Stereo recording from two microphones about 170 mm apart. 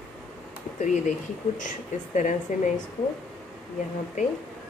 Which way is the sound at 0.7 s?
45° left (ahead or behind).